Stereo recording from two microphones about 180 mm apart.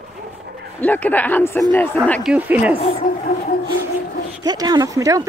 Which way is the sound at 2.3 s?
10° right (ahead or behind).